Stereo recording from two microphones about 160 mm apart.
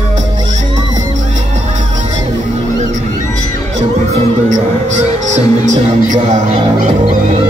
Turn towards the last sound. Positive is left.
turn(degrees=-45)  # may be behind; listen again after turning